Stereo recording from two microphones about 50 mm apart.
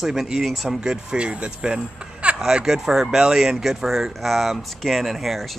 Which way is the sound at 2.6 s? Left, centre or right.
Centre.